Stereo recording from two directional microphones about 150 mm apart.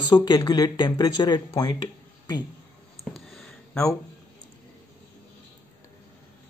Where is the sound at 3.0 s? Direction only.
Centre (ahead or behind).